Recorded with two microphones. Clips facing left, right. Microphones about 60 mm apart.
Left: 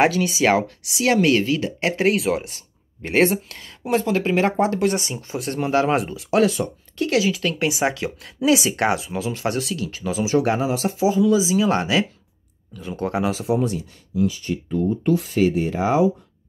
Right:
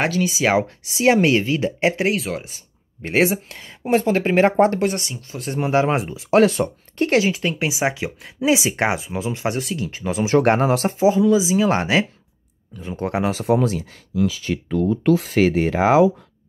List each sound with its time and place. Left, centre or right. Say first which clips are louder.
0.0 s speech: left 2 dB; centre
0.6 s speech: right 2 dB; right
2.0 s speech: left 3 dB; centre
3.8 s speech: right 2 dB; right
4.6 s speech: right 4 dB; right
5.0 s speech: left 4 dB; left
5.7 s speech: right 1 dB; right
6.3 s speech: right 3 dB; right
7.5 s speech: even; centre
8.4 s speech: even; right
10.1 s speech: right 4 dB; right
11.0 s speech: right 1 dB; right